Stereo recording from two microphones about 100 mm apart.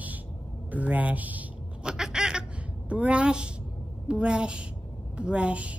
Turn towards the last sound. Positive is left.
turn(degrees=-10)  # may be behind; listen again after turning